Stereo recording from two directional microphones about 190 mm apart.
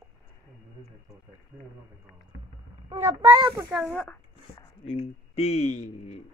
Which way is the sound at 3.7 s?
5° right (ahead or behind).